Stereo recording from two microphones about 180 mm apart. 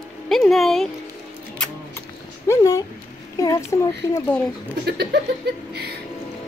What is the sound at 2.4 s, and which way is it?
Cat, 20° left (ahead or behind).